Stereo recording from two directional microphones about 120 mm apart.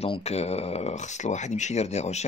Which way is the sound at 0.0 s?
60° left (ahead or behind).